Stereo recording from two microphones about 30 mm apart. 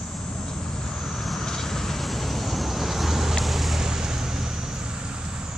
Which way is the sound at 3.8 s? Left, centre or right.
Centre.